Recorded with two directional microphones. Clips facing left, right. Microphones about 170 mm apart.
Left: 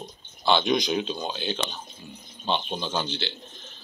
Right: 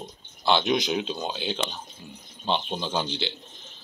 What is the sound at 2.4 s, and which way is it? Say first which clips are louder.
Speech: even; centre (ahead or behind).